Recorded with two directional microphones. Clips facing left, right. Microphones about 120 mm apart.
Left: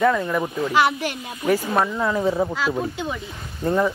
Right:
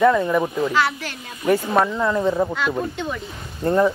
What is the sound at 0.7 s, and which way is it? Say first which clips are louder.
Speech: left 2 dB; 15° left (ahead or behind).